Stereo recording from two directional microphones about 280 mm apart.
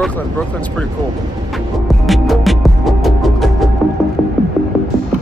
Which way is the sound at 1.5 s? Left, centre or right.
Centre.